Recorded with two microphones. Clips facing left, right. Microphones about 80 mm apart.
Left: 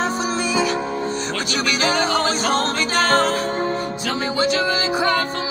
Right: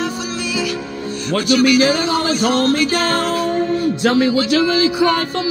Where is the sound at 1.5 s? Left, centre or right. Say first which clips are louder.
Right 9 dB; left.